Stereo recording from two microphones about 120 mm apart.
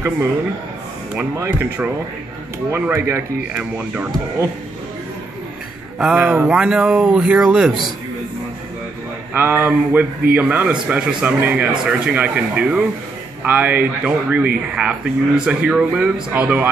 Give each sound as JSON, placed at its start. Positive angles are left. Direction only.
{"t": 1.3, "sound": "speech", "side_deg": -20}
{"t": 2.7, "sound": "speech", "side_deg": -20}
{"t": 5.9, "sound": "speech", "side_deg": -10}
{"t": 9.3, "sound": "speech", "side_deg": -15}